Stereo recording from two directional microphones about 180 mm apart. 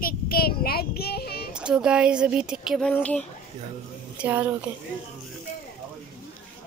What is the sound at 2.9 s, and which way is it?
Speech, 10° left (ahead or behind).